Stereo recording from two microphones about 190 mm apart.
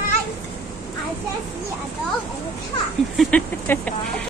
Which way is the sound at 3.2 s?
5° left (ahead or behind).